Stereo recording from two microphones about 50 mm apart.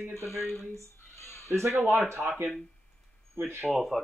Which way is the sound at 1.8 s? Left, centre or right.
Right.